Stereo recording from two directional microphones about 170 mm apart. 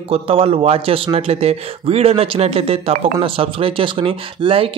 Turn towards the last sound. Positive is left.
turn(degrees=-35)  # may be behind; listen again after turning